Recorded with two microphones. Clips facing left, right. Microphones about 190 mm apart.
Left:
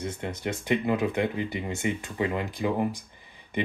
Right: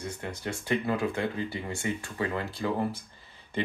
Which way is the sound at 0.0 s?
20° left (ahead or behind).